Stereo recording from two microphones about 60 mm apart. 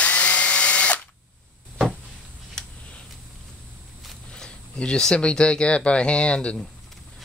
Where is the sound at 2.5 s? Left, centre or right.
Centre.